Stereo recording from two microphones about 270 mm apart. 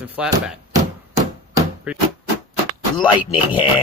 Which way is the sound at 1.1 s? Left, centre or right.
Centre.